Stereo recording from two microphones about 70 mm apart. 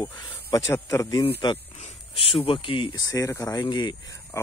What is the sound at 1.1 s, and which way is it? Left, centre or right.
Speech, left.